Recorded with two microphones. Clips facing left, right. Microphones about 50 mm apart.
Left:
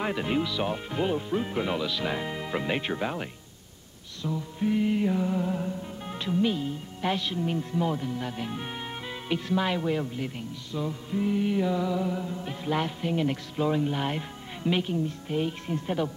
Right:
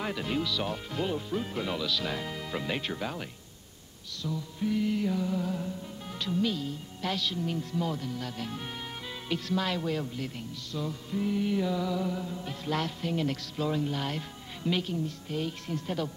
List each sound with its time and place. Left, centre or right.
0.0 s music: left